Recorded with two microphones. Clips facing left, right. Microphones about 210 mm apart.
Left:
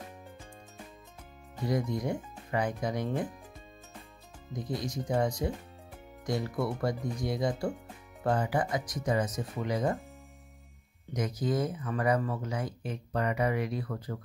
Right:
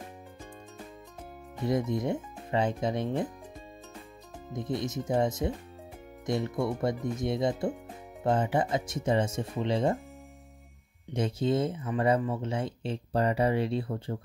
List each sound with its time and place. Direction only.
1.6 s speech: 25° right (ahead or behind)
4.5 s speech: 25° right (ahead or behind)
11.1 s speech: 30° right (ahead or behind)